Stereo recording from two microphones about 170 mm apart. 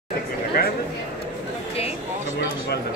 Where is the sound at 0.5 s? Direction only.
65° left (ahead or behind).